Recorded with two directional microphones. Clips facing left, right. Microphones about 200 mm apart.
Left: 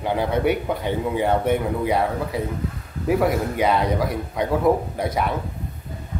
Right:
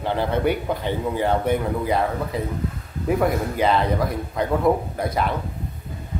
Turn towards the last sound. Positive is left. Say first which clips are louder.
# even
turn(degrees=5)  # may be behind; listen again after turning